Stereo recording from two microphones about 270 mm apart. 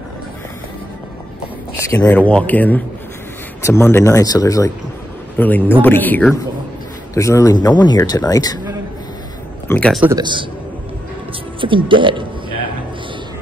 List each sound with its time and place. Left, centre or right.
1.8 s speech: centre
9.7 s a man's voice: centre
10.0 s speech: centre
11.6 s speech: centre